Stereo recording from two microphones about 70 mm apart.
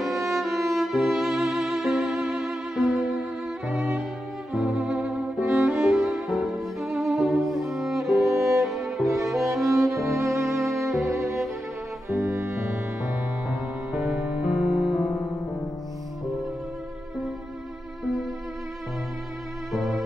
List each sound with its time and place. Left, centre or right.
0.0 s music: centre
4.5 s violin: centre
5.6 s music: centre
8.4 s music: right
8.6 s music: centre
9.9 s music: right
13.5 s music: centre
19.7 s music: centre